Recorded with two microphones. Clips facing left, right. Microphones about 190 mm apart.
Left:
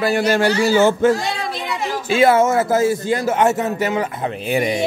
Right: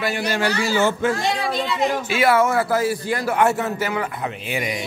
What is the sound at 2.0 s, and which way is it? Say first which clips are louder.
A man's voice: left 6 dB; 25° left (ahead or behind).